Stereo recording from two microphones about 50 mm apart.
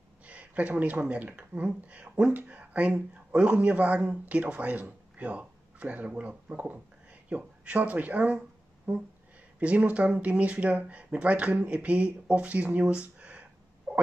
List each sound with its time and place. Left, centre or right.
0.2 s speech: right
9.6 s speech: right